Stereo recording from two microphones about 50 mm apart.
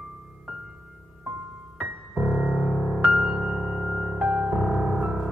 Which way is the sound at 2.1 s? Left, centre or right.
Centre.